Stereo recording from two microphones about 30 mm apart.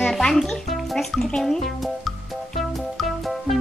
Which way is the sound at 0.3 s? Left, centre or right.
Centre.